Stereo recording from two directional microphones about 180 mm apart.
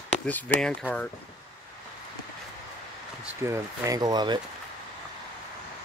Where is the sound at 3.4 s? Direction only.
20° right (ahead or behind).